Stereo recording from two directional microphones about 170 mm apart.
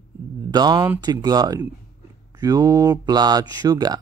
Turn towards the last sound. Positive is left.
turn(degrees=-25)  # may be behind; listen again after turning